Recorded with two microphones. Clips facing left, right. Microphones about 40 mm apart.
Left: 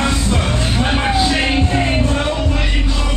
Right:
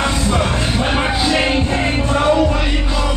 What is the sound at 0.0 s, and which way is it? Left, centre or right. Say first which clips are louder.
Music: right 1 dB; centre.